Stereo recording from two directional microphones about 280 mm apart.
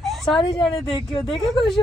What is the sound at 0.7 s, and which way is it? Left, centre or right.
Speech, centre.